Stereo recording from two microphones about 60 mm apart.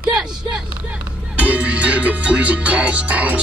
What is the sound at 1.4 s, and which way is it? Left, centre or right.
Music, right.